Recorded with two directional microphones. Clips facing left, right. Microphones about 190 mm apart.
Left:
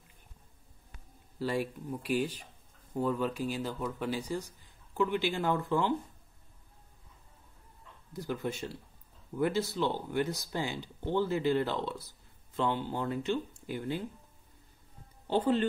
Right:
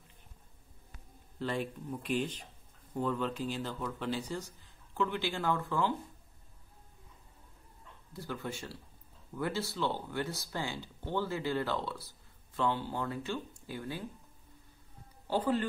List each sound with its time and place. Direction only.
1.4 s speech: 10° left (ahead or behind)
8.1 s speech: 15° left (ahead or behind)
15.2 s speech: 25° left (ahead or behind)